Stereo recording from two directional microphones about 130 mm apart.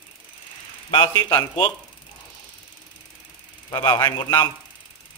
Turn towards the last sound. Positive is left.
turn(degrees=30)  # may be behind; listen again after turning